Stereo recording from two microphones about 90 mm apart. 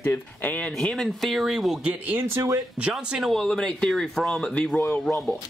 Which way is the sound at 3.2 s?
5° left (ahead or behind).